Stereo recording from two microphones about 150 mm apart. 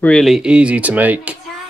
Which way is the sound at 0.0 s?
5° left (ahead or behind).